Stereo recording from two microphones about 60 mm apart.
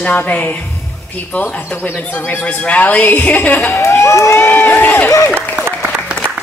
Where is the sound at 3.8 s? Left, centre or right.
Left.